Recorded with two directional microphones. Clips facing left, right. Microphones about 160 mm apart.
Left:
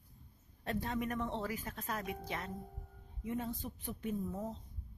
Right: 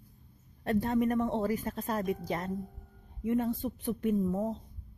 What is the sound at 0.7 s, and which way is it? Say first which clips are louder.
Speech: right 9 dB; 50° right (ahead or behind).